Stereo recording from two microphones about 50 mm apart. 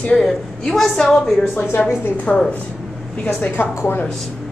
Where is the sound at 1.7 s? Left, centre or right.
Left.